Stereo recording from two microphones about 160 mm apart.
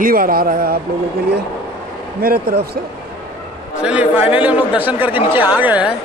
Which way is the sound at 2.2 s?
70° right (ahead or behind).